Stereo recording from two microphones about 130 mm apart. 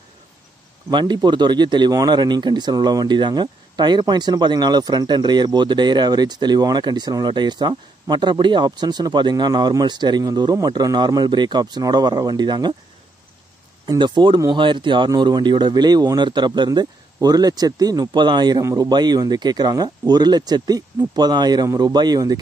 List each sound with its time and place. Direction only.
0.8 s speech: 35° right (ahead or behind)
13.8 s speech: 35° right (ahead or behind)